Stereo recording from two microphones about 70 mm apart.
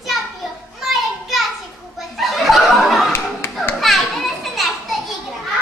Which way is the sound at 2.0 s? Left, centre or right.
Centre.